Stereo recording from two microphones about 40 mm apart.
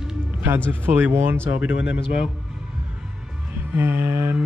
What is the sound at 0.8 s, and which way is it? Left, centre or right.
Speech, right.